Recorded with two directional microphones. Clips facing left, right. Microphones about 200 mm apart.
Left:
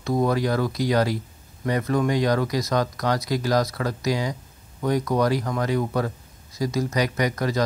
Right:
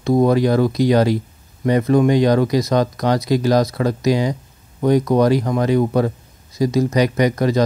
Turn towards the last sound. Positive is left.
turn(degrees=-25)  # may be behind; listen again after turning